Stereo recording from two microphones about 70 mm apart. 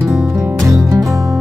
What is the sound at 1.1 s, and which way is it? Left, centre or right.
Music, right.